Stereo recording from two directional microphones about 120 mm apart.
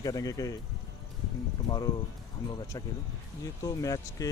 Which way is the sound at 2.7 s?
30° left (ahead or behind).